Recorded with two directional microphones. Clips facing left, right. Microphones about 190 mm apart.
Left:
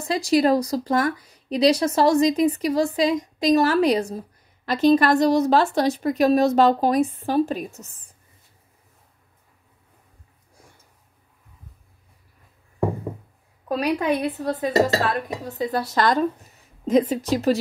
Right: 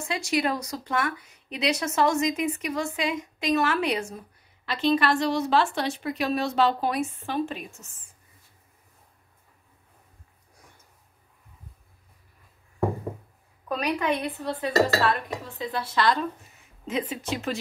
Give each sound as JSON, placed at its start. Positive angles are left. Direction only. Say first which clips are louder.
{"t": 0.0, "sound": "speech", "louder": "left 7 dB", "side_deg": 35}
{"t": 13.7, "sound": "speech", "louder": "left 4 dB", "side_deg": 40}